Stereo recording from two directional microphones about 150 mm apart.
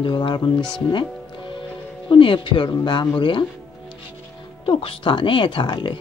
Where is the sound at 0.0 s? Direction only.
35° left (ahead or behind).